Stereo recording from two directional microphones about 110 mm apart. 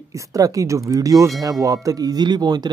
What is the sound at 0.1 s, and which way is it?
Speech, 30° right (ahead or behind).